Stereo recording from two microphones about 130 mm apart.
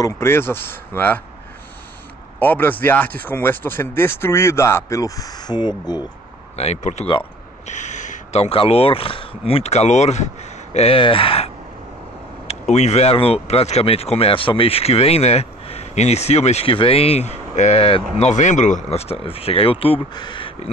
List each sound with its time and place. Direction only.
0.0 s speech: 20° left (ahead or behind)
2.3 s speech: 15° left (ahead or behind); by 6.0 s 35° left (ahead or behind)
6.5 s speech: 55° left (ahead or behind)
12.4 s speech: 60° left (ahead or behind)
18.3 s speech: 70° left (ahead or behind); by 20.5 s 40° left (ahead or behind)